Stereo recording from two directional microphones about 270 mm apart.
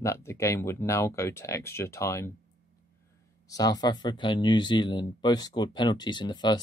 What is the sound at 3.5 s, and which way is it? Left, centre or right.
Speech, centre.